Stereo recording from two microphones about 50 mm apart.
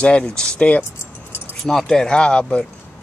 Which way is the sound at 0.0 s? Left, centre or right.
Centre.